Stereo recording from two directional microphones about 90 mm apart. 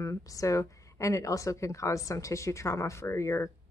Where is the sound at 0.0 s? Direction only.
35° left (ahead or behind).